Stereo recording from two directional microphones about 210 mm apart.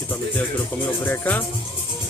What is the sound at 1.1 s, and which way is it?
Speech, 10° left (ahead or behind).